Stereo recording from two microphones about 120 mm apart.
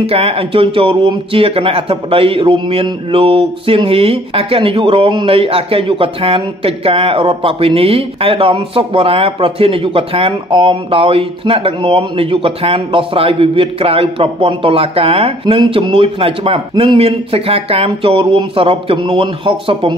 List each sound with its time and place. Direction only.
0.0 s speech: 55° right (ahead or behind)